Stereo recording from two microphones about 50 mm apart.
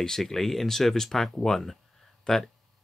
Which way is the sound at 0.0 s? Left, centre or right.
Centre.